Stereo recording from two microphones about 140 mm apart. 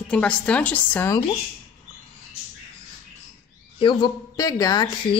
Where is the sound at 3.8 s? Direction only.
30° left (ahead or behind).